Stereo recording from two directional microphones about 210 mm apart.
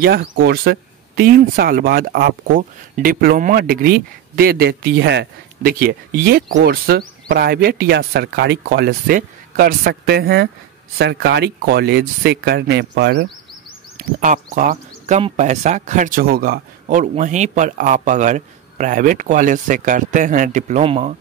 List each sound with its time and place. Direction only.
0.0 s speech: 50° right (ahead or behind)
13.9 s speech: 40° right (ahead or behind)